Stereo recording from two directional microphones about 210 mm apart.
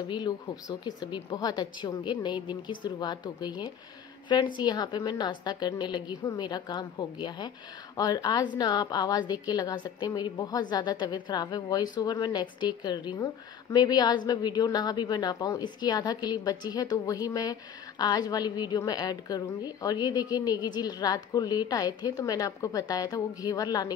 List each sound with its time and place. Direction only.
0.1 s a woman's voice: 20° left (ahead or behind)